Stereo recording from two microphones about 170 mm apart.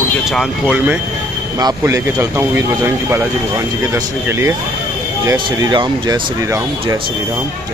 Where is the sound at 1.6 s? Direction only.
20° right (ahead or behind).